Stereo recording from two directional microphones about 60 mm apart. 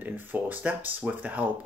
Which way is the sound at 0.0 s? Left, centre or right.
Right.